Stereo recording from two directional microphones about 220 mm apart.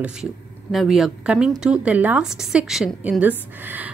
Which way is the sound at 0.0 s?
5° right (ahead or behind).